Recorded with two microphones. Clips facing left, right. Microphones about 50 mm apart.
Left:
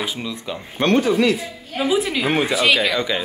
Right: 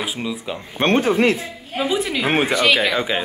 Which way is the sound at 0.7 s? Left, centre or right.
Right.